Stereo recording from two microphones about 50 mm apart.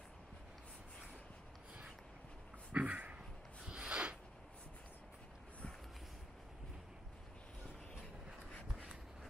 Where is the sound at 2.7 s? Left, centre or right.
Right.